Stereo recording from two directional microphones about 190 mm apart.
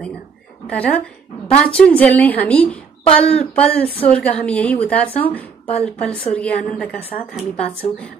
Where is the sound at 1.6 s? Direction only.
5° left (ahead or behind).